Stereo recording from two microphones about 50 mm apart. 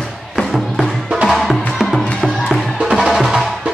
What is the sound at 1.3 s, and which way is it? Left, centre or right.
Music, centre.